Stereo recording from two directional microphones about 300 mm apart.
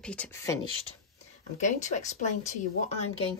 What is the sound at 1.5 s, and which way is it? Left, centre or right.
Speech, left.